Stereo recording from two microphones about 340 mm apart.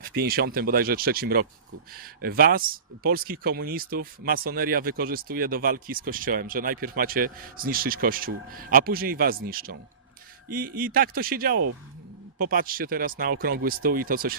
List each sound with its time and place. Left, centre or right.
0.0 s speech: right